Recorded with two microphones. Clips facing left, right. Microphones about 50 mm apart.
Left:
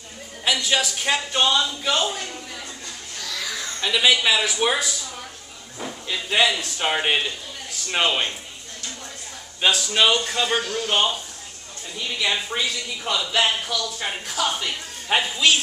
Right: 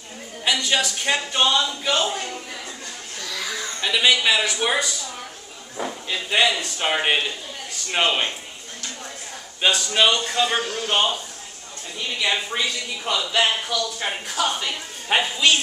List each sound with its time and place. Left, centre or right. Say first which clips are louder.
0.5 s a man's voice: even; centre
3.3 s speech: right 1 dB; centre
5.9 s speech: left 1 dB; centre
9.6 s a man's voice: even; centre
10.6 s speech: even; right
10.9 s speech: right 1 dB; centre
12.2 s a man's voice: right 1 dB; centre